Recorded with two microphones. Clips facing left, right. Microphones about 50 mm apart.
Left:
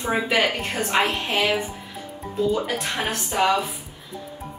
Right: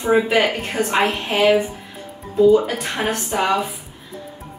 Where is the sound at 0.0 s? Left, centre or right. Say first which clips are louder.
Right 5 dB; centre.